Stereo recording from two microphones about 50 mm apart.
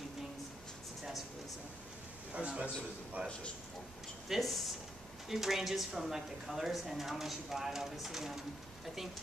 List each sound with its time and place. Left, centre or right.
2.3 s a man's voice: right
4.3 s speech: centre